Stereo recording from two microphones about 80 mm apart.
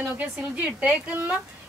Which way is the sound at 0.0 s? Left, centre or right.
Centre.